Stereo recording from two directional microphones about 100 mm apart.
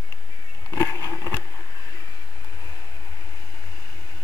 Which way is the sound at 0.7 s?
35° left (ahead or behind).